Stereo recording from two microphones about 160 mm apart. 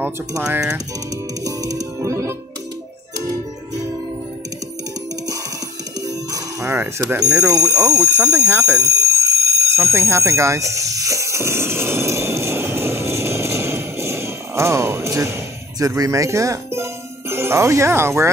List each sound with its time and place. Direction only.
1.4 s music: 20° right (ahead or behind)
6.0 s music: 20° right (ahead or behind)
15.8 s speech: 20° right (ahead or behind)